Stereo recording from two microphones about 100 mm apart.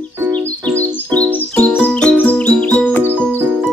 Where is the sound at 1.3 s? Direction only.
15° left (ahead or behind).